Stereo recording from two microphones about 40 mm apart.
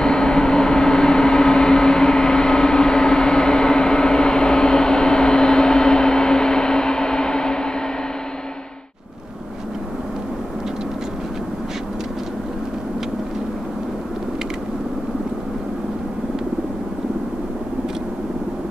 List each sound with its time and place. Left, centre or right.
0.0 s vehicle: centre